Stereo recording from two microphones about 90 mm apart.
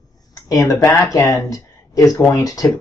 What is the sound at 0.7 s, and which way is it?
Speech, 35° left (ahead or behind).